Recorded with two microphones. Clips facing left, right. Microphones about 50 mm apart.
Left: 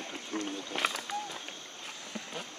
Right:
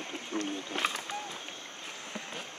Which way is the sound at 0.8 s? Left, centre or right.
Centre.